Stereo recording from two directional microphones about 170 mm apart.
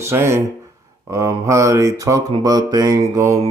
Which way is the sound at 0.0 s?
15° right (ahead or behind).